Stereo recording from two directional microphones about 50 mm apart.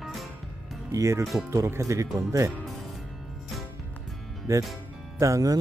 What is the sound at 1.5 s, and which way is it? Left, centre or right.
Speech, right.